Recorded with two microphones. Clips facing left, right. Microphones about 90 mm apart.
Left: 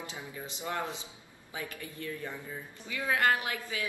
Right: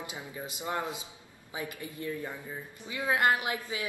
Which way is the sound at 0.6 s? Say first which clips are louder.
Right 1 dB; 15° right (ahead or behind).